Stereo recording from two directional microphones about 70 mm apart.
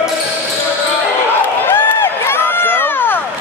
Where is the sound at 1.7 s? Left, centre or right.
Left.